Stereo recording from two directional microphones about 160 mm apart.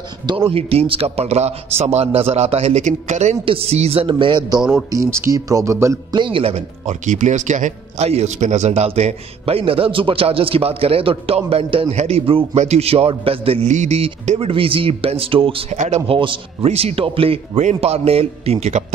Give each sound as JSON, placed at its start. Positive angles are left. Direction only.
{"t": 0.5, "sound": "speech", "side_deg": -35}
{"t": 3.4, "sound": "speech", "side_deg": -35}
{"t": 4.6, "sound": "speech", "side_deg": -5}
{"t": 4.9, "sound": "speech", "side_deg": -20}
{"t": 6.1, "sound": "speech", "side_deg": -30}